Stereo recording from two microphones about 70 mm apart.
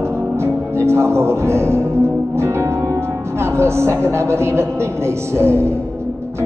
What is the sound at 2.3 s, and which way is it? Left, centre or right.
A woman's voice, right.